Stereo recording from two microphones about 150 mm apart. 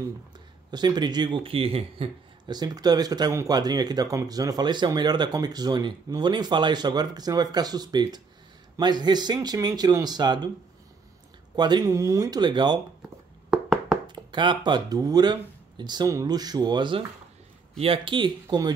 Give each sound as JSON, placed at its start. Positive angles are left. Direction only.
{"t": 0.7, "sound": "speech", "side_deg": -30}
{"t": 2.5, "sound": "speech", "side_deg": -25}
{"t": 11.5, "sound": "speech", "side_deg": -30}
{"t": 13.5, "sound": "knock", "side_deg": 0}
{"t": 14.0, "sound": "speech", "side_deg": -30}